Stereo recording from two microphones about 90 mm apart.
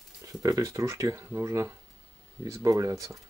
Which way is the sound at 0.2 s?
40° right (ahead or behind).